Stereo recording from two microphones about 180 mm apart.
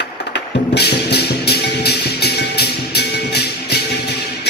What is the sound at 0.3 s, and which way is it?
Music, 65° left (ahead or behind).